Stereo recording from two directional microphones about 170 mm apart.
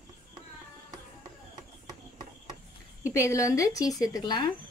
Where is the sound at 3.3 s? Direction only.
20° left (ahead or behind).